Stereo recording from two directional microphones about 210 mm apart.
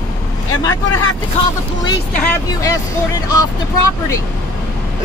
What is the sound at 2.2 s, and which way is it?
Speech, 15° left (ahead or behind).